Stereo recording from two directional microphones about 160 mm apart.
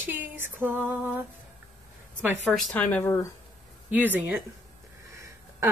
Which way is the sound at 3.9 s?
10° right (ahead or behind).